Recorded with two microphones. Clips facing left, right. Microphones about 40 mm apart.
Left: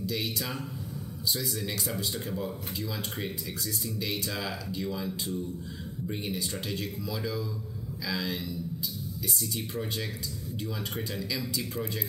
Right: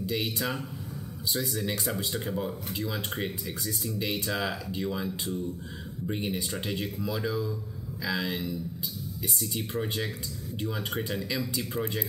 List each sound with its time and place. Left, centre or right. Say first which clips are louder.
0.0 s speech: right 2 dB; right
6.0 s speech: right 3 dB; right